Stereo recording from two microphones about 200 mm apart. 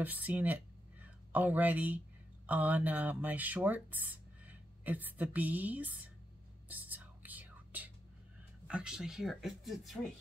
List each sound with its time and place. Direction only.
0.0 s speech: 10° right (ahead or behind)
6.7 s whispering: 10° right (ahead or behind)
8.6 s speech: 5° right (ahead or behind)